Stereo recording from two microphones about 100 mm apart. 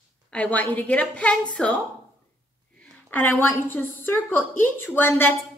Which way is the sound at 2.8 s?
20° left (ahead or behind).